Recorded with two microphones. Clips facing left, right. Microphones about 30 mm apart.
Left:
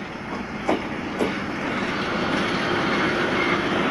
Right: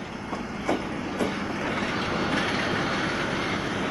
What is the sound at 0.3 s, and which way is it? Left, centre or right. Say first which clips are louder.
Train: left 3 dB; centre.